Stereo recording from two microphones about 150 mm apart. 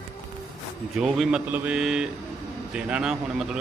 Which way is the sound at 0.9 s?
Centre (ahead or behind).